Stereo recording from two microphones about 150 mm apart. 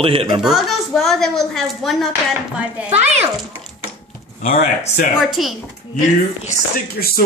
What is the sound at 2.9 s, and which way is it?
Speech, 45° right (ahead or behind).